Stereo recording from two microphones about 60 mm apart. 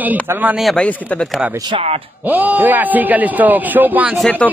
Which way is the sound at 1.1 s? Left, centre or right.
Centre.